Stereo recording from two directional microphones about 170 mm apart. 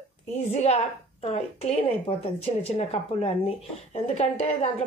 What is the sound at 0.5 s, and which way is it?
Speech, 40° left (ahead or behind).